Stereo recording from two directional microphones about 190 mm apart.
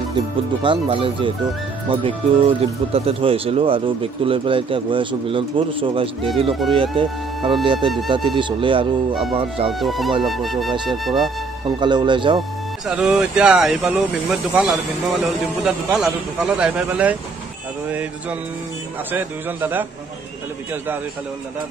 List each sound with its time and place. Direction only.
0.6 s speech: 25° right (ahead or behind)
9.7 s speech: centre (ahead or behind)
11.8 s speech: 25° right (ahead or behind)
12.8 s speech: 5° right (ahead or behind)
19.1 s speech: 10° right (ahead or behind)